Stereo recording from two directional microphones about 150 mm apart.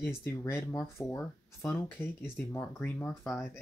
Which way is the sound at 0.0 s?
15° left (ahead or behind).